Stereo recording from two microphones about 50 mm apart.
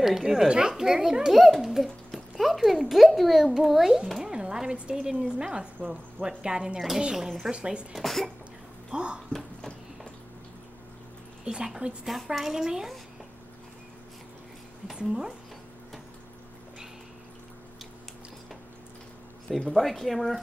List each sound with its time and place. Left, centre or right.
0.0 s a child's voice: centre
7.5 s speech: centre
7.9 s a child's voice: centre
8.9 s speech: centre
11.4 s speech: centre
12.0 s a child's voice: centre
15.0 s speech: centre
19.7 s a child's voice: centre